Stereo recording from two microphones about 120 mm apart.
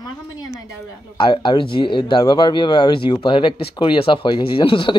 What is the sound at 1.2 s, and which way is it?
Speech, 40° left (ahead or behind).